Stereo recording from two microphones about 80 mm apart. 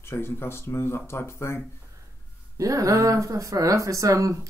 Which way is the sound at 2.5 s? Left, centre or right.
Right.